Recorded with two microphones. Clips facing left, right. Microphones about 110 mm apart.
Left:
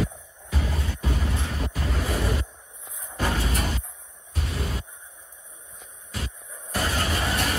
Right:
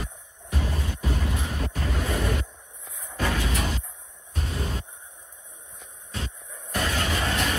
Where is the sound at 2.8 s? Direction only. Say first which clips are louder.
Even; 25° left (ahead or behind).